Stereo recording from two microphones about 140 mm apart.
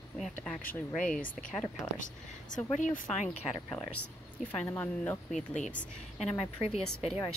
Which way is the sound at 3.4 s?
25° left (ahead or behind).